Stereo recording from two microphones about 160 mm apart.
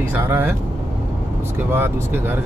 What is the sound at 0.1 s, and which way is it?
Speech, 15° right (ahead or behind).